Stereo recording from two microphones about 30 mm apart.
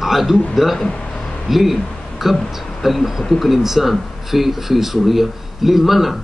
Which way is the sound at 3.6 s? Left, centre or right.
Centre.